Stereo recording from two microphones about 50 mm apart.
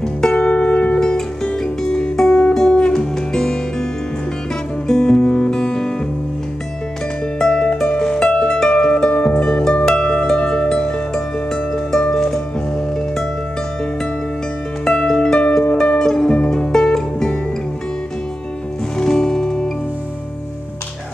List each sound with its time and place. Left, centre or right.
0.0 s music: centre
0.4 s music: left
0.9 s music: centre
4.8 s music: centre
7.3 s music: centre
14.9 s music: centre
18.9 s music: centre